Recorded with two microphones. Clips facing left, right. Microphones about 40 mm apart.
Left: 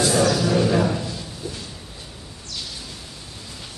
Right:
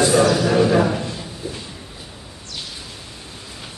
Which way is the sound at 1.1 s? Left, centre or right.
Right.